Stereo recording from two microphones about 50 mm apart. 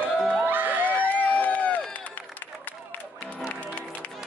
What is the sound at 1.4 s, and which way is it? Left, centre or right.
Run, left.